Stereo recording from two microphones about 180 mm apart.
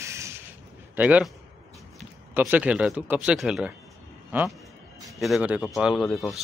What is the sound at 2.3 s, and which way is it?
Speech, 10° right (ahead or behind).